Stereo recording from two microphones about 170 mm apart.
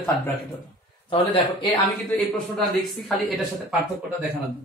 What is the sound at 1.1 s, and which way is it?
Speech, 30° left (ahead or behind).